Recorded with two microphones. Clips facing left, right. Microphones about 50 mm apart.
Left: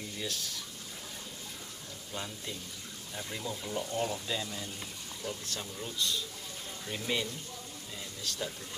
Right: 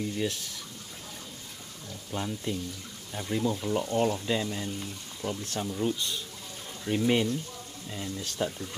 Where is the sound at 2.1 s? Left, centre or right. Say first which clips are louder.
Right 6 dB; right.